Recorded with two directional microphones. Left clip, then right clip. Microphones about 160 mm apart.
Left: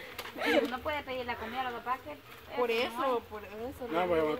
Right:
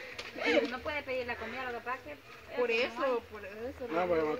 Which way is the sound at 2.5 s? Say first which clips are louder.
Even; 15° left (ahead or behind).